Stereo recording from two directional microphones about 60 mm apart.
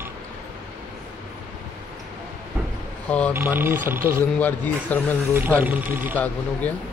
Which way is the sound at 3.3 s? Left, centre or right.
Right.